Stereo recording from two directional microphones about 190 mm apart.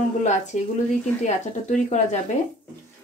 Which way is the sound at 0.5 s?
40° left (ahead or behind).